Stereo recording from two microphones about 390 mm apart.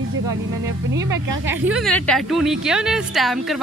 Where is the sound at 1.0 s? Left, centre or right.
Right.